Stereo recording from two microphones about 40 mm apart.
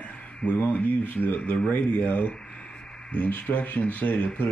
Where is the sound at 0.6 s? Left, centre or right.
Left.